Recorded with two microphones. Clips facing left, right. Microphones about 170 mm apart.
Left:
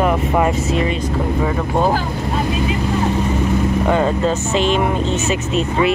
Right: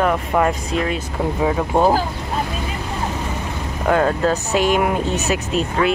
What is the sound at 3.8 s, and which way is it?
Speech, centre (ahead or behind).